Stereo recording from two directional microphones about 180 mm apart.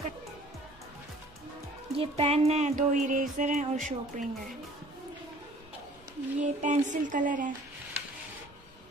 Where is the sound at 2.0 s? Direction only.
35° right (ahead or behind).